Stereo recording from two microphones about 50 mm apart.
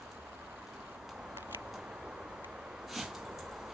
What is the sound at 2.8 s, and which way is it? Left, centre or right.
Dog, centre.